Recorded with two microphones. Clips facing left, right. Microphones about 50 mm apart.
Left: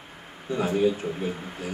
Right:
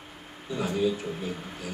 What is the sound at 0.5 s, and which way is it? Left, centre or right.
Speech, left.